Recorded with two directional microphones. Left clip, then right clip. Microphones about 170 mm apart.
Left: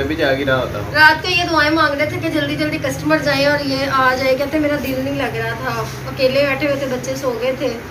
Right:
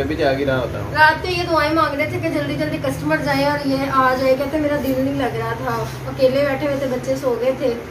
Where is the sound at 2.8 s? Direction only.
25° right (ahead or behind).